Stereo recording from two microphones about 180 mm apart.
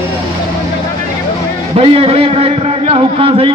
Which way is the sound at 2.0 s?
35° right (ahead or behind).